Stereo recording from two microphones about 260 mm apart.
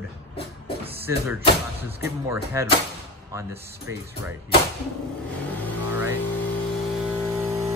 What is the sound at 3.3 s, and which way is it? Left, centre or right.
Speech, centre.